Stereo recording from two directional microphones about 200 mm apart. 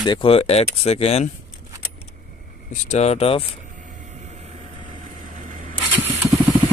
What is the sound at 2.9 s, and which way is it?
Speech, 35° left (ahead or behind).